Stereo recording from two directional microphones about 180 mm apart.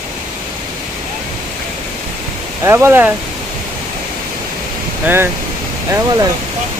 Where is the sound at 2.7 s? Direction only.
15° right (ahead or behind).